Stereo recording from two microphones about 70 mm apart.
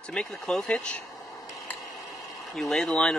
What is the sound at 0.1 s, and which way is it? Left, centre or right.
Speech, centre.